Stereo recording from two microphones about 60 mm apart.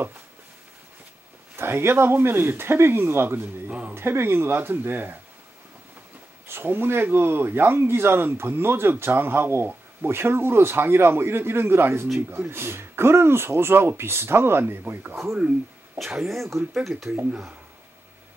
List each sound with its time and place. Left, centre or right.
1.6 s speech: right
6.4 s speech: right
16.0 s speech: centre